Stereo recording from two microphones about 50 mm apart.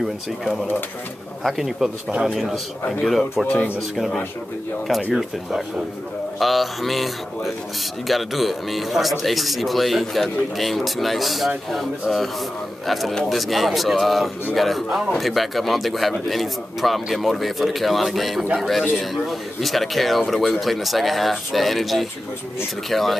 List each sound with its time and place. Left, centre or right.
1.4 s a man's voice: centre
2.0 s speech: right
2.3 s a man's voice: centre
6.4 s a man's voice: centre